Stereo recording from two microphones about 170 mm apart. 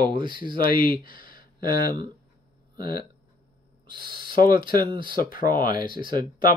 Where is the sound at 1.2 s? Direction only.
60° left (ahead or behind).